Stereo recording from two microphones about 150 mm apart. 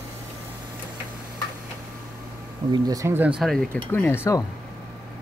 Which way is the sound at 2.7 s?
25° right (ahead or behind).